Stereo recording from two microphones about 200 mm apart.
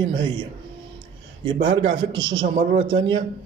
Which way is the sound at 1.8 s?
25° right (ahead or behind).